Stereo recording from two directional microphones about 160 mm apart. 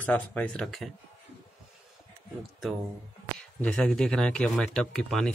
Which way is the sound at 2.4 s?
Centre (ahead or behind).